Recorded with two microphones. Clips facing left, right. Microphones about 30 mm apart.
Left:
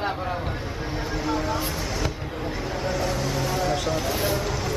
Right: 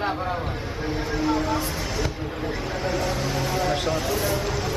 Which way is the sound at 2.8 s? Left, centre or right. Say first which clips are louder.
Right 1 dB; centre.